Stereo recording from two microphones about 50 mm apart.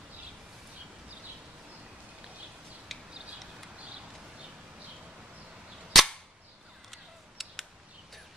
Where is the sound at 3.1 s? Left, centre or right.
Right.